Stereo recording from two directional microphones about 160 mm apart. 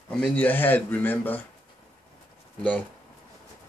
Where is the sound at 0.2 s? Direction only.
10° left (ahead or behind).